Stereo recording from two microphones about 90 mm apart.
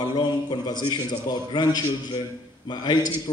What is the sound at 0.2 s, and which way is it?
A man's voice, 55° left (ahead or behind).